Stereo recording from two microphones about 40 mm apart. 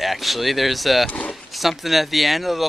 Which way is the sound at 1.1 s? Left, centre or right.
Left.